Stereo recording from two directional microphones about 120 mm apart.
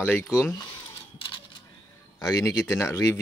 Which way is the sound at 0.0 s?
15° left (ahead or behind).